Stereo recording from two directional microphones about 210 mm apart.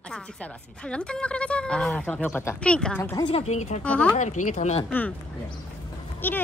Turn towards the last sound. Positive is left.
turn(degrees=10)  # may be behind; listen again after turning